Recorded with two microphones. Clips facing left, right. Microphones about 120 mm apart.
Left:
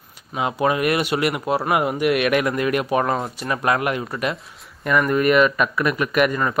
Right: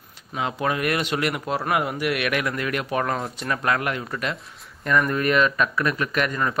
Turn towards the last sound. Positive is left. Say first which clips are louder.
# left 5 dB
turn(degrees=10)  # may be behind; listen again after turning